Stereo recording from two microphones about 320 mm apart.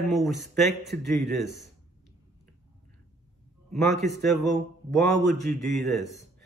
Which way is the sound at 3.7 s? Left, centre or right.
Centre.